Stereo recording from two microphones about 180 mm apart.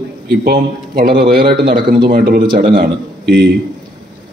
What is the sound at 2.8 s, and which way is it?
Speech, 65° right (ahead or behind).